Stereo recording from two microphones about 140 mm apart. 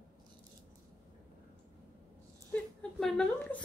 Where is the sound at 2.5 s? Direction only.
5° left (ahead or behind).